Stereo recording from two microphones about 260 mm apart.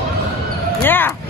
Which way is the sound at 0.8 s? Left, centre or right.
Centre.